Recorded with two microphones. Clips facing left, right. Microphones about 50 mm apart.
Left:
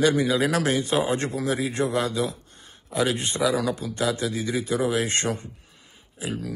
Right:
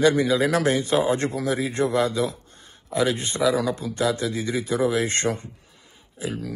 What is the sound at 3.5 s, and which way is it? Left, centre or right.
Speech, right.